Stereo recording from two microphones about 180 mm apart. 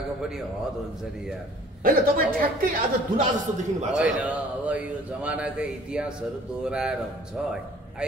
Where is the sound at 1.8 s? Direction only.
50° right (ahead or behind).